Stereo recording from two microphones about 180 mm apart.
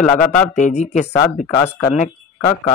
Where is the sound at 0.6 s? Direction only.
40° left (ahead or behind).